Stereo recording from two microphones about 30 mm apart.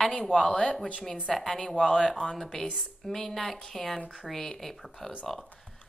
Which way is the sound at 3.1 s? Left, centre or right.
Centre.